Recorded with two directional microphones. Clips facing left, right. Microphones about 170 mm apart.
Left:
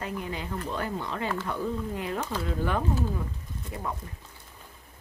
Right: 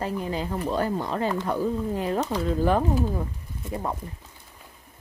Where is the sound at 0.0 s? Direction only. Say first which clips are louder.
Right 6 dB; 35° right (ahead or behind).